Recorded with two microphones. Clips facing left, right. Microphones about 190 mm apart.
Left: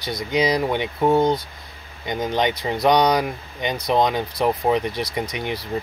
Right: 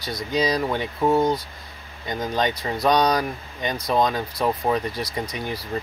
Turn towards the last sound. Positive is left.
turn(degrees=20)  # may be behind; listen again after turning